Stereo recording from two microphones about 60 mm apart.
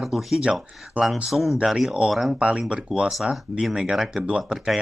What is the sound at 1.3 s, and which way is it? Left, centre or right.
Speech, centre.